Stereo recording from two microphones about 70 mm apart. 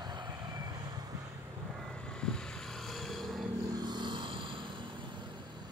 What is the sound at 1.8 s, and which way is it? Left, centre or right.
Vehicle, centre.